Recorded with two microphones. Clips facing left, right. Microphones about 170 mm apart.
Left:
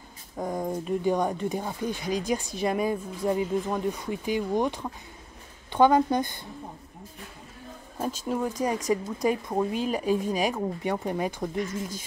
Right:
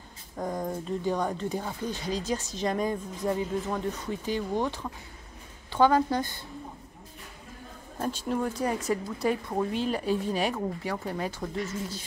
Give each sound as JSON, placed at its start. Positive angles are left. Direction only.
{"t": 0.4, "sound": "speech", "side_deg": 10}
{"t": 8.5, "sound": "speech", "side_deg": 15}